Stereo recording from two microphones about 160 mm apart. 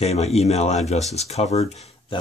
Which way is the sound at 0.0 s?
40° left (ahead or behind).